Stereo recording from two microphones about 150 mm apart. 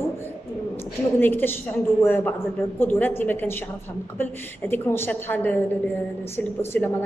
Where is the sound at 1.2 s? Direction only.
15° left (ahead or behind).